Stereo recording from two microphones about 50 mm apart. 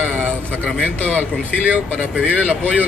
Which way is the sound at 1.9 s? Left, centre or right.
Right.